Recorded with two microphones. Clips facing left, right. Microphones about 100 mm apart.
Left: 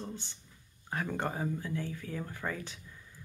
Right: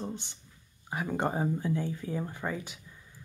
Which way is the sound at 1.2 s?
25° right (ahead or behind).